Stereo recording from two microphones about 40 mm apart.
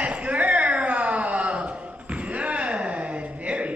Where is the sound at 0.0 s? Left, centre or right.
Right.